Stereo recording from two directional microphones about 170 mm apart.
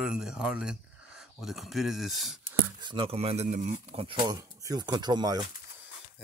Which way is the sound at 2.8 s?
30° right (ahead or behind).